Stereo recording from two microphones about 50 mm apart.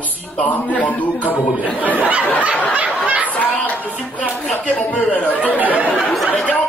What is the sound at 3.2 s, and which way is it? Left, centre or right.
Speech, left.